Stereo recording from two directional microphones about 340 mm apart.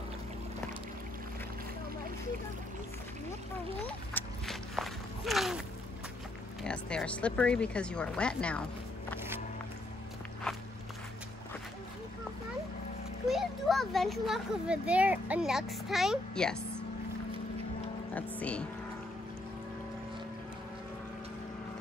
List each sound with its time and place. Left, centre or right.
3.8 s walk: centre
6.6 s speech: centre
13.3 s a child's voice: centre
18.1 s speech: centre